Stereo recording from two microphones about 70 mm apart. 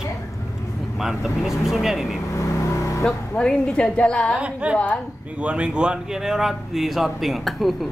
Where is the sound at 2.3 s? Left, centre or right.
Left.